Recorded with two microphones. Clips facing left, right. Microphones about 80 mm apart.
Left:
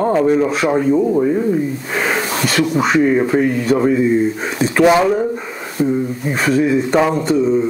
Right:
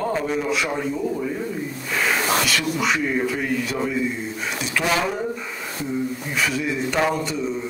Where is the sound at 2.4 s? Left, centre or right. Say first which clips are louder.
Left 7 dB; left.